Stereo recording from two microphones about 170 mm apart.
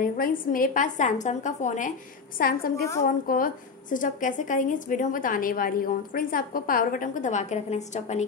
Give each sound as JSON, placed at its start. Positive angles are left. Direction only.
{"t": 0.0, "sound": "a woman's voice", "side_deg": 55}